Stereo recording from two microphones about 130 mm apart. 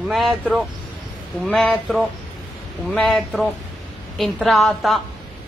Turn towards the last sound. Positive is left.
turn(degrees=0)  # may be behind; listen again after turning